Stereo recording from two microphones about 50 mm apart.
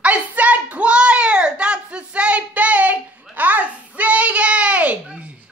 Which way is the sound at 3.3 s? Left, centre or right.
Right.